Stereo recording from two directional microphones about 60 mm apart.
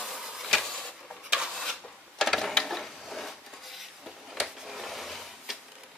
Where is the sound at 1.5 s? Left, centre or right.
Centre.